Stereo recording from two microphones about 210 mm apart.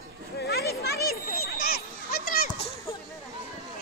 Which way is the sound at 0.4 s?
50° left (ahead or behind).